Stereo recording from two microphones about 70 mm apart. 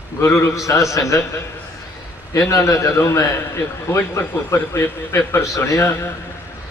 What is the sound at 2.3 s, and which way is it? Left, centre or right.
A man's voice, left.